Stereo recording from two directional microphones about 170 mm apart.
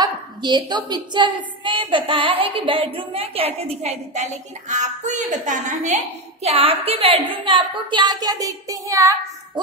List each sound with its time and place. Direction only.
0.0 s a woman's voice: 25° right (ahead or behind)